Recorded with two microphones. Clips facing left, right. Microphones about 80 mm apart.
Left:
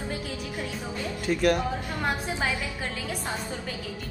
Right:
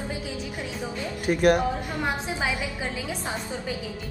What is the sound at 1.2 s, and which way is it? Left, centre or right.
Speech, right.